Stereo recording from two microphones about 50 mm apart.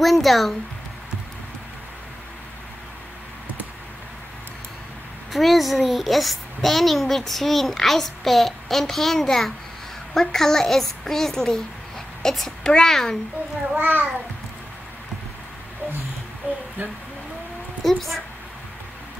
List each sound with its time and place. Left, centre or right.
0.0 s speech: centre
5.3 s a child's voice: centre
13.7 s a child's voice: right
17.8 s a child's voice: centre